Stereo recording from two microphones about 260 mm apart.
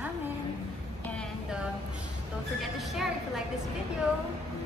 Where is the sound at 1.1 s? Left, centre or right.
Centre.